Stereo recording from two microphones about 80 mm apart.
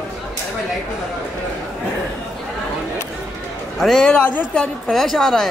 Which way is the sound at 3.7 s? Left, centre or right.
Centre.